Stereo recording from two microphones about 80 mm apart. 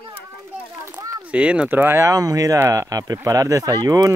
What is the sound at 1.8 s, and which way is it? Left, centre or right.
Speech, right.